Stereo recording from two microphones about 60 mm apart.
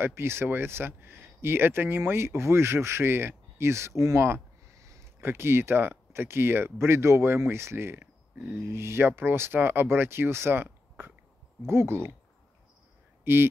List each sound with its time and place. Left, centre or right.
0.0 s speech: right
4.6 s a sound: right
5.2 s speech: right
13.2 s speech: right